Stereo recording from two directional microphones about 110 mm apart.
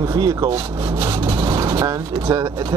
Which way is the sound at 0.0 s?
40° right (ahead or behind).